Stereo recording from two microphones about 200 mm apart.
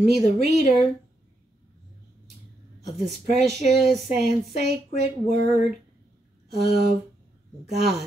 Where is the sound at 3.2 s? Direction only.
55° right (ahead or behind).